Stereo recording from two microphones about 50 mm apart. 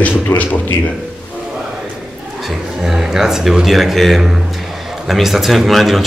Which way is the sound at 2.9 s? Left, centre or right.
Centre.